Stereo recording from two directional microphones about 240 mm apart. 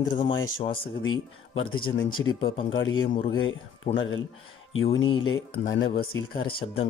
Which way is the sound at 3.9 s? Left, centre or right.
Left.